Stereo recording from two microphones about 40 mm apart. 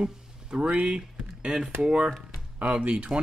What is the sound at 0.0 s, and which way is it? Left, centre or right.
Speech, right.